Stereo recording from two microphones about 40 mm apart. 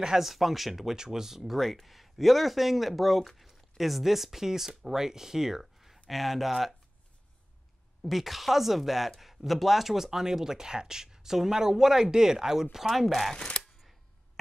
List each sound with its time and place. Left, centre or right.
0.2 s speech: centre
0.9 s speech: centre
8.1 s speech: centre
12.7 s speech: centre
13.4 s a sound: left